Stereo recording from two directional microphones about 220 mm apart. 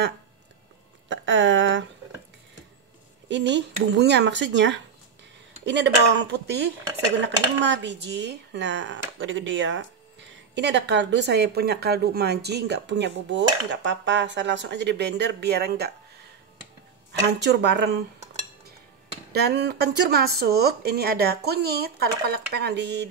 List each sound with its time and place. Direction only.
1.0 s a sound: 60° right (ahead or behind)
3.3 s speech: 55° right (ahead or behind)
17.3 s speech: 50° right (ahead or behind)
19.3 s speech: 50° right (ahead or behind)